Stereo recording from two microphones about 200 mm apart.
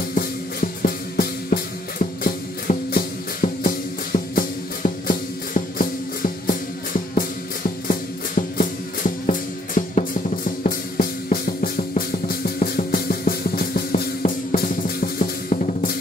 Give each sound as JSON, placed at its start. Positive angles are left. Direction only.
{"t": 0.8, "sound": "music", "side_deg": 50}
{"t": 7.9, "sound": "music", "side_deg": 40}